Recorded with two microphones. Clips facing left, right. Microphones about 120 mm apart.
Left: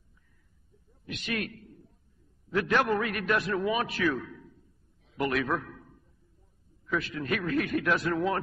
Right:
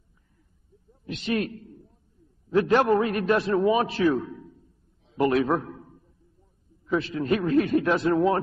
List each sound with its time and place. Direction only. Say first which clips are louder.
1.0 s a man's voice: right 7 dB; 30° right (ahead or behind)